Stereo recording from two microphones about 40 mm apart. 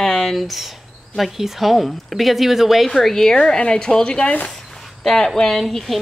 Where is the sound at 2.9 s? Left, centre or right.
Centre; by 4.4 s left.